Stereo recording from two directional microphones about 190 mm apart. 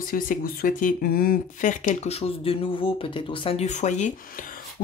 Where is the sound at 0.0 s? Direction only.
50° left (ahead or behind).